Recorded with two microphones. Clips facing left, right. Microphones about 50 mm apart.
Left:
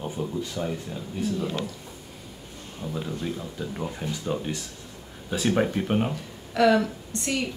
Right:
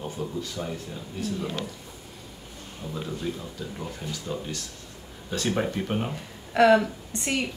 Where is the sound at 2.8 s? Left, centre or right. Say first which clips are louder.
Left 2 dB; centre; by 4.6 s left.